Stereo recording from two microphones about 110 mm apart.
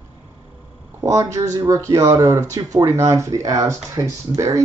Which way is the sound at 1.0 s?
30° right (ahead or behind).